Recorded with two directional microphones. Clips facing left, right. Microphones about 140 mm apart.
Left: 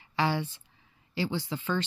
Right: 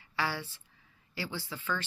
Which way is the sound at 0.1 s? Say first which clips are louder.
Left 6 dB; 20° left (ahead or behind).